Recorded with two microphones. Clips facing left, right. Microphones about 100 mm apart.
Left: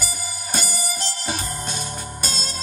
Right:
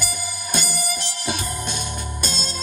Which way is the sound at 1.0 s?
45° left (ahead or behind).